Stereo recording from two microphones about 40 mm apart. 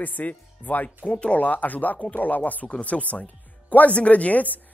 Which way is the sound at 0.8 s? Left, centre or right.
Left.